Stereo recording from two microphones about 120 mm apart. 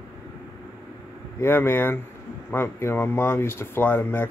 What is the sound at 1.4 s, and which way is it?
Speech, 20° left (ahead or behind).